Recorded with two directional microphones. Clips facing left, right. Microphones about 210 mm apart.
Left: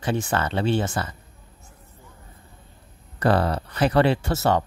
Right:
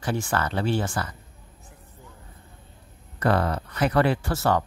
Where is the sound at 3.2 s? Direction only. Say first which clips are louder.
Left 2 dB; 30° left (ahead or behind).